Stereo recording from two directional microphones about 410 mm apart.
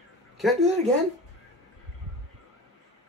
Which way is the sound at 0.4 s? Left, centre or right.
Centre.